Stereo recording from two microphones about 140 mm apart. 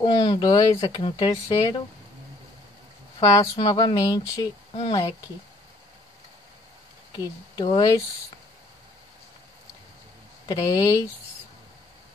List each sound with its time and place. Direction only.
0.0 s speech: 25° left (ahead or behind)
3.2 s speech: 25° left (ahead or behind)
7.1 s speech: 30° left (ahead or behind)
10.5 s speech: 25° left (ahead or behind)